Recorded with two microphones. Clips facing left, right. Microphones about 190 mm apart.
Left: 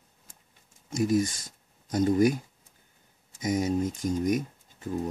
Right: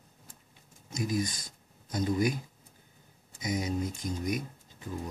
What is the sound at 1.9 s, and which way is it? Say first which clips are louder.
Speech: left 6 dB; 45° left (ahead or behind).